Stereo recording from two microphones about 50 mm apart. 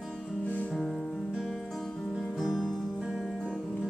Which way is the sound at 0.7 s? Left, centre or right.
Centre.